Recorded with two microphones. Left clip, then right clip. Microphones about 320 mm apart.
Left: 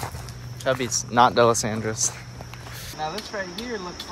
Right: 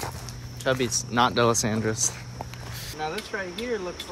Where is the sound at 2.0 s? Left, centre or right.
Centre.